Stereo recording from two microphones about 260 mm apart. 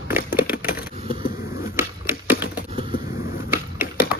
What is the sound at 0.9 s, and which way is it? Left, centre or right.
Vehicle, centre.